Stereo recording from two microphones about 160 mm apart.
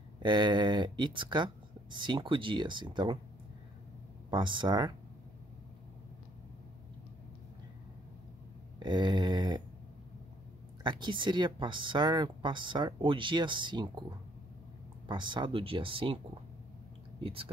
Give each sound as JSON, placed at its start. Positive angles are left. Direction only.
{"t": 0.2, "sound": "speech", "side_deg": -30}
{"t": 4.3, "sound": "speech", "side_deg": -30}
{"t": 8.7, "sound": "speech", "side_deg": -30}
{"t": 10.8, "sound": "speech", "side_deg": -30}
{"t": 15.0, "sound": "speech", "side_deg": -30}
{"t": 17.2, "sound": "speech", "side_deg": -35}